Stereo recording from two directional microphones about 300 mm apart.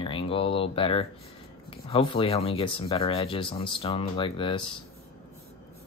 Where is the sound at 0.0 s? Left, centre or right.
Centre.